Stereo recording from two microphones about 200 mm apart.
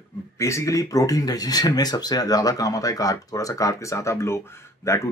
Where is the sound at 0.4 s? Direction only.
15° left (ahead or behind).